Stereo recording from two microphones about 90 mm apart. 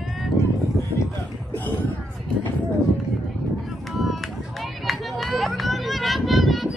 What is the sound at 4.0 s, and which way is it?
Run, centre (ahead or behind).